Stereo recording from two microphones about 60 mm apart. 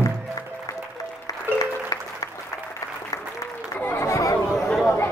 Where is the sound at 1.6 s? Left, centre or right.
Left.